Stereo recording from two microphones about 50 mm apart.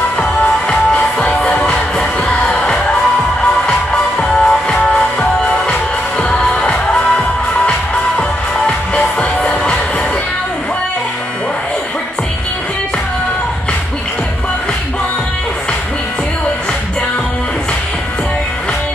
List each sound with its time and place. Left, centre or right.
0.2 s music: left
3.6 s music: centre